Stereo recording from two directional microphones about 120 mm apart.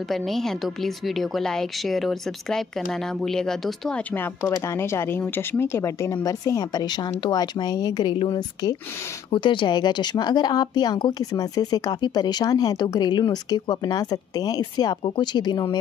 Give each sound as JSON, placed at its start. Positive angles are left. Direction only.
{"t": 0.1, "sound": "a woman's voice", "side_deg": 5}
{"t": 4.5, "sound": "speech", "side_deg": 20}